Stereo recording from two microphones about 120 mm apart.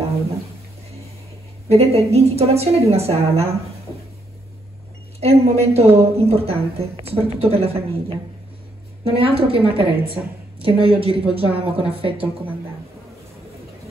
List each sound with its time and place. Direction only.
1.7 s a woman's voice: 60° right (ahead or behind)
5.2 s a woman's voice: 55° right (ahead or behind)